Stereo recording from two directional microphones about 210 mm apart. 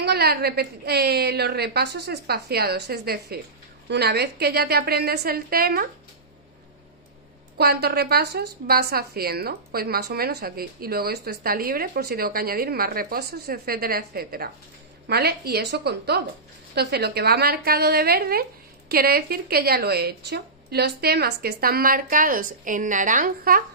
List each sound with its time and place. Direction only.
0.0 s speech: 50° right (ahead or behind)
7.5 s speech: 50° right (ahead or behind)